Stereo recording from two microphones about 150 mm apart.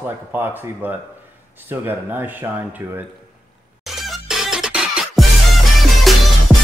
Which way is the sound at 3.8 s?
Centre (ahead or behind).